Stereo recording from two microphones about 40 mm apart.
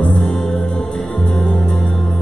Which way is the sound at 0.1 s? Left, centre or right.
Centre.